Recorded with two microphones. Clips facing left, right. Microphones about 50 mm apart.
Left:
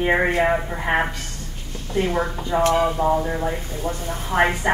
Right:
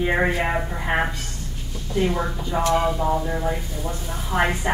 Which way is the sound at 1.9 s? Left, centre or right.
Left.